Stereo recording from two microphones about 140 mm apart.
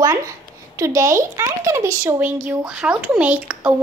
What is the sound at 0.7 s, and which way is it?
Speech, 20° right (ahead or behind).